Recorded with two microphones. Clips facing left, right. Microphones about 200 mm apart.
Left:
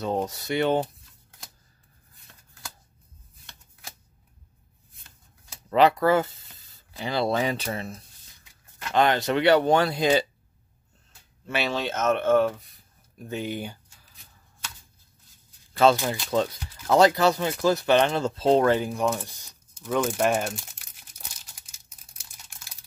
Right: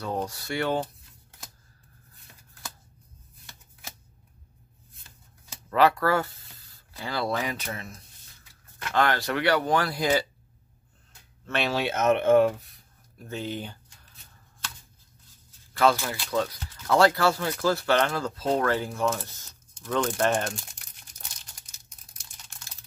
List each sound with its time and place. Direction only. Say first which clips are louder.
0.0 s speech: left 4 dB; 20° left (ahead or behind)
2.3 s shuffling cards: right 1 dB; 10° right (ahead or behind)
4.9 s shuffling cards: even; centre (ahead or behind)
5.7 s speech: left 3 dB; 20° left (ahead or behind)
8.9 s speech: left 3 dB; 20° left (ahead or behind)
11.4 s speech: even; 5° left (ahead or behind)
11.7 s speech: right 2 dB; 10° right (ahead or behind)
12.5 s a sound: right 1 dB; centre (ahead or behind)
13.2 s speech: left 2 dB; 15° left (ahead or behind)
15.8 s speech: left 3 dB; 20° left (ahead or behind)